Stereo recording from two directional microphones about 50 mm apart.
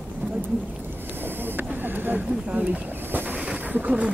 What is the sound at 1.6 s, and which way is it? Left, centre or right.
Vehicle, right.